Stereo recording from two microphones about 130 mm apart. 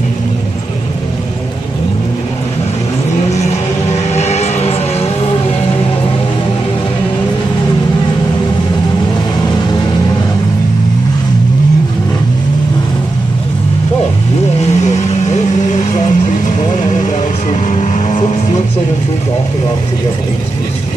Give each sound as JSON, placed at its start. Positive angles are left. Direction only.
{"t": 4.1, "sound": "music", "side_deg": 60}
{"t": 14.6, "sound": "vehicle", "side_deg": 60}